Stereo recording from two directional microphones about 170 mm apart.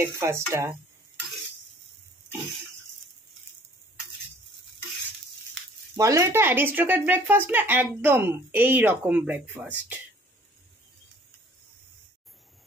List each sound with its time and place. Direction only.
0.0 s speech: 15° right (ahead or behind)
5.9 s speech: 20° right (ahead or behind)